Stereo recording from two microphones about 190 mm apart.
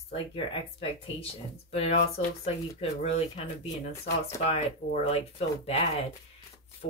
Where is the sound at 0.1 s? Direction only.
30° left (ahead or behind).